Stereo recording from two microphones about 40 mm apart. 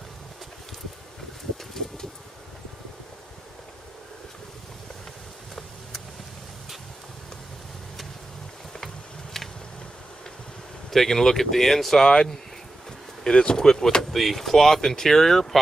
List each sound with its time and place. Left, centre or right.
1.7 s vehicle: centre
8.7 s insect: centre
10.9 s speech: centre